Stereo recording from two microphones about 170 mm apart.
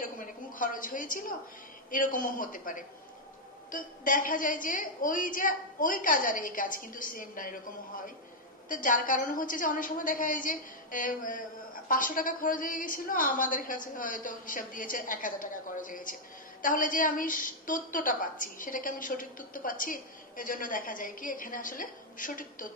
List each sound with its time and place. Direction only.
0.0 s a sound: 50° left (ahead or behind)
1.9 s a woman's voice: 50° left (ahead or behind)
8.6 s a woman's voice: 50° left (ahead or behind)